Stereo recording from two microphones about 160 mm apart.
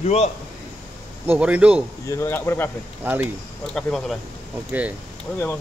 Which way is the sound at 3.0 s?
10° right (ahead or behind).